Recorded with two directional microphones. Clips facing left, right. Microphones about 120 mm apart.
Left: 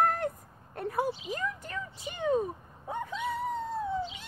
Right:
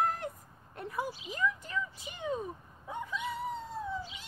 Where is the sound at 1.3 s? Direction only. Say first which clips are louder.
Right 1 dB; 55° left (ahead or behind).